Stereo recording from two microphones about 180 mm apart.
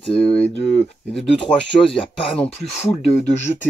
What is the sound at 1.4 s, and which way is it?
Speech, 30° left (ahead or behind).